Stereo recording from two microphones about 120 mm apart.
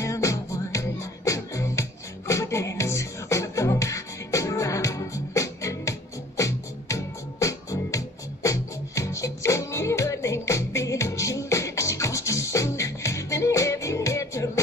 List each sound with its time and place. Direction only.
0.0 s music: 25° left (ahead or behind)